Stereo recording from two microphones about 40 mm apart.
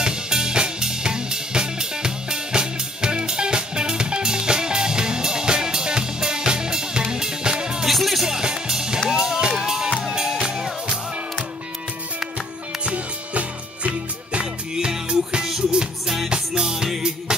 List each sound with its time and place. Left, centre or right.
0.0 s music: centre
7.8 s music: centre
8.3 s music: centre
12.8 s music: right; by 17.1 s centre